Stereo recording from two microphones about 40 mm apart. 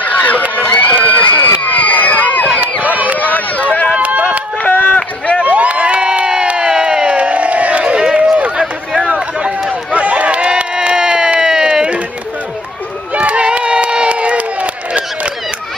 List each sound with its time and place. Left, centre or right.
0.0 s run: left
0.7 s run: left
2.8 s run: right
3.2 s run: left
3.9 s run: right
4.6 s run: left
5.4 s crowd: right
7.2 s crowd: right
8.5 s a sound: centre
9.9 s run: right
11.5 s a sound: centre
13.1 s crowd: right